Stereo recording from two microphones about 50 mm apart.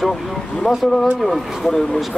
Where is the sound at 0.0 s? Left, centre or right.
Centre.